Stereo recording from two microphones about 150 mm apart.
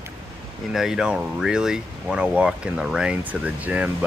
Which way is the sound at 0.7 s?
Centre (ahead or behind).